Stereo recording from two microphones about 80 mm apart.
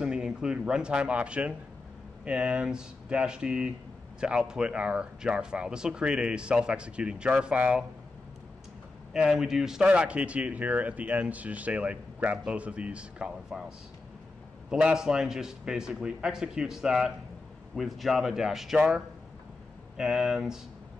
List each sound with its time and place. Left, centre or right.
0.0 s speech: centre
9.1 s speech: centre